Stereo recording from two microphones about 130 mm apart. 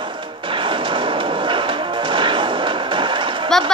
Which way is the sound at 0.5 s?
40° right (ahead or behind).